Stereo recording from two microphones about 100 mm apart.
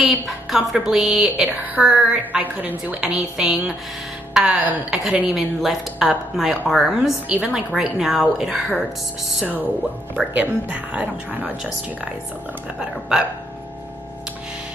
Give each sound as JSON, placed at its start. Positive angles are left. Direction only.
{"t": 0.0, "sound": "a woman's voice", "side_deg": -5}
{"t": 1.6, "sound": "a woman's voice", "side_deg": -15}
{"t": 10.1, "sound": "a woman's voice", "side_deg": -15}
{"t": 13.1, "sound": "a woman's voice", "side_deg": -5}